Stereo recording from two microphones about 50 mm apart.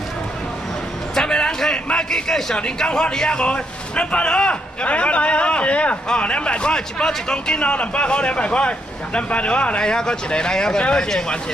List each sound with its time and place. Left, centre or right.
1.1 s a man's voice: centre